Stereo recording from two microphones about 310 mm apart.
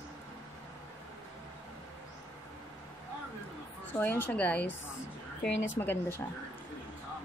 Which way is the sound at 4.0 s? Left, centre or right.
Centre.